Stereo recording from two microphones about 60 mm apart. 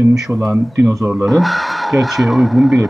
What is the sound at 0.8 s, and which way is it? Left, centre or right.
Speech, right.